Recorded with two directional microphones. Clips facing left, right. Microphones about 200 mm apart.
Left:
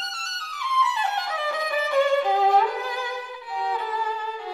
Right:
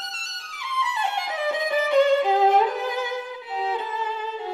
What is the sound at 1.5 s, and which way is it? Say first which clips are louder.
Music: right 4 dB; 20° right (ahead or behind).